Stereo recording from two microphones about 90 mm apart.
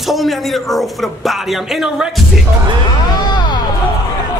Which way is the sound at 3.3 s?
50° left (ahead or behind).